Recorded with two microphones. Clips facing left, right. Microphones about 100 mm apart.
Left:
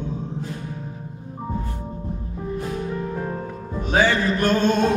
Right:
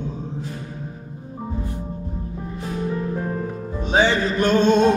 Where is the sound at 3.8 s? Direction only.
25° right (ahead or behind).